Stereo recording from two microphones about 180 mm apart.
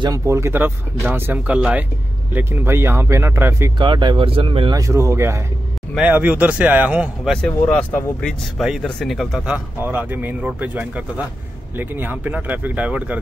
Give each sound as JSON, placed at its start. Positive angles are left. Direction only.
{"t": 0.0, "sound": "speech", "side_deg": -20}
{"t": 3.8, "sound": "speech", "side_deg": -25}
{"t": 7.4, "sound": "speech", "side_deg": 5}
{"t": 9.8, "sound": "speech", "side_deg": -10}